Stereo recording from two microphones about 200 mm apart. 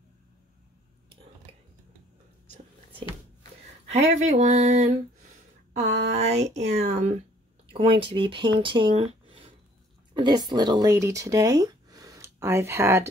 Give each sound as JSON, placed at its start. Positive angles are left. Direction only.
{"t": 1.5, "sound": "a sound", "side_deg": -30}
{"t": 3.9, "sound": "speech", "side_deg": -35}
{"t": 6.1, "sound": "speech", "side_deg": -35}